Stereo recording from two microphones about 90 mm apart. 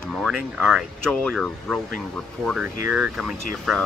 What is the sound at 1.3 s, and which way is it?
Speech, centre (ahead or behind).